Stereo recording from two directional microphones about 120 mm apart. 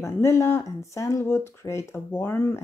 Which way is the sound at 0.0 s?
25° left (ahead or behind).